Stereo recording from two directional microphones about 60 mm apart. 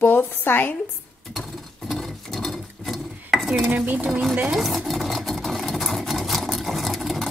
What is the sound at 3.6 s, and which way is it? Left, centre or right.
Dishes, right.